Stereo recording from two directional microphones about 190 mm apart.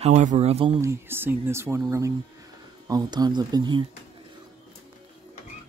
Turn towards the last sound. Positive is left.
turn(degrees=-25)  # may be behind; listen again after turning